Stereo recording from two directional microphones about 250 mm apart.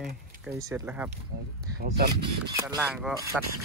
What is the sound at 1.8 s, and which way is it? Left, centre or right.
Speech, right.